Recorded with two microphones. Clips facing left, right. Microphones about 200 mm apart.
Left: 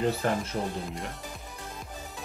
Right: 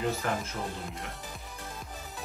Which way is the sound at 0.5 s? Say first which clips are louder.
Left 5 dB; 40° left (ahead or behind).